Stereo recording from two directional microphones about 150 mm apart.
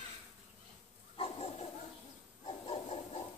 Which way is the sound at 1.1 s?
40° left (ahead or behind).